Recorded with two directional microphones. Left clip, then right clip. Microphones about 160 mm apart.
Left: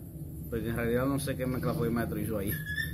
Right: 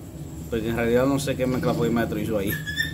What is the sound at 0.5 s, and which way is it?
Speech, 5° right (ahead or behind).